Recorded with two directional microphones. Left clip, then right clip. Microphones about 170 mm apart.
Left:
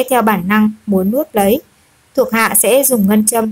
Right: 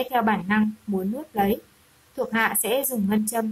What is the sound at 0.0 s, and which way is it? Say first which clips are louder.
A woman's voice: left 10 dB; 30° left (ahead or behind).